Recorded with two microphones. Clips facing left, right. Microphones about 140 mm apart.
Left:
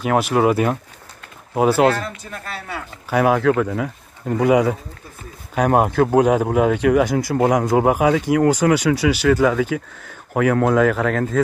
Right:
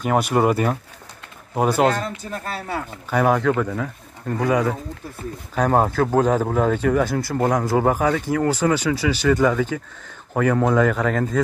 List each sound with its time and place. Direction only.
0.0 s speech: centre (ahead or behind)
2.3 s speech: 35° right (ahead or behind)
3.1 s speech: 5° left (ahead or behind)